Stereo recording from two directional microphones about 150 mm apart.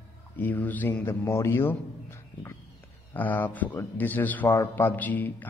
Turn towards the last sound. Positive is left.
turn(degrees=10)  # may be behind; listen again after turning